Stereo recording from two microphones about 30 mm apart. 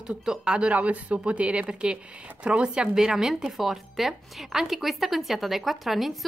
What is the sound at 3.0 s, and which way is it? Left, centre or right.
Speech, centre.